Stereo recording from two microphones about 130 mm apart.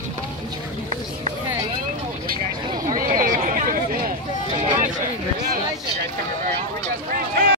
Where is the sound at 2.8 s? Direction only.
90° right.